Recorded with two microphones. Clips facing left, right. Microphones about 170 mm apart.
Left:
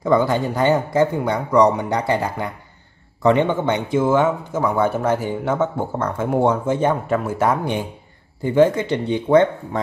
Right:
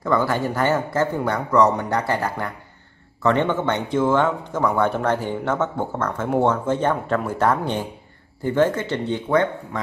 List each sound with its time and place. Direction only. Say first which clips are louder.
0.0 s a man's voice: left 3 dB; 20° left (ahead or behind)